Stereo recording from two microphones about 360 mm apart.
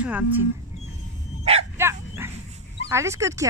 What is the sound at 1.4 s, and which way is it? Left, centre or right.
Bow-wow, centre.